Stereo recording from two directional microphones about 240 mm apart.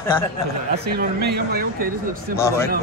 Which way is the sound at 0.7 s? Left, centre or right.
Right.